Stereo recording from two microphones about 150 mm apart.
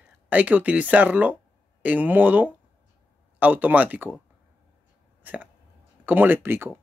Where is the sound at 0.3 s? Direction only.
10° right (ahead or behind).